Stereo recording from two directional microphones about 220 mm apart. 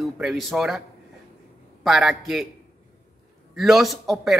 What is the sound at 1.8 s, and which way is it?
Speech, centre (ahead or behind).